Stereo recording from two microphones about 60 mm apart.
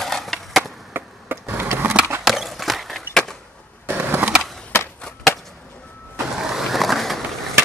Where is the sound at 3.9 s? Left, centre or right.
Right.